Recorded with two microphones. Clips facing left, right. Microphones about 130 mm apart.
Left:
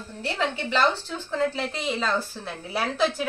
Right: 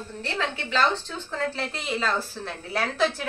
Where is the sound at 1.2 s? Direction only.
Centre (ahead or behind).